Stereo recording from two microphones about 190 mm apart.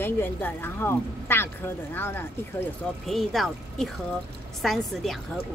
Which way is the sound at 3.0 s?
Centre (ahead or behind).